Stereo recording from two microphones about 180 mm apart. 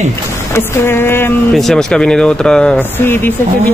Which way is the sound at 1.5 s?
Centre (ahead or behind).